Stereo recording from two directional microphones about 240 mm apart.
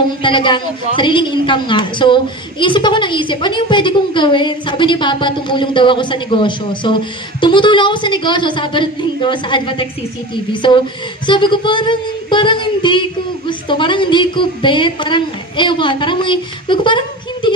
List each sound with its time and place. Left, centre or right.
0.2 s a woman's voice: centre